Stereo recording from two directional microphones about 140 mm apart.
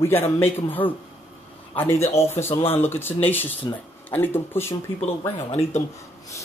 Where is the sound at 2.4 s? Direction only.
45° left (ahead or behind).